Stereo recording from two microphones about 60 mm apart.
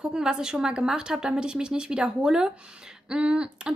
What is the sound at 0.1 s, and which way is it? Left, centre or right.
Speech, centre.